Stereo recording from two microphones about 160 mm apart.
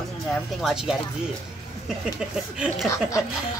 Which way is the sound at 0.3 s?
Centre (ahead or behind).